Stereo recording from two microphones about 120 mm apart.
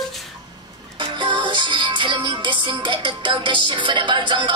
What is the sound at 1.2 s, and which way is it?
Music, 40° right (ahead or behind).